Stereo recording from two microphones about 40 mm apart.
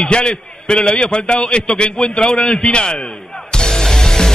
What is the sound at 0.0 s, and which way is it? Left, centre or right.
A man's voice, left.